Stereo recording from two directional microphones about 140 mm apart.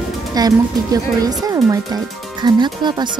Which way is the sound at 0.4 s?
30° right (ahead or behind).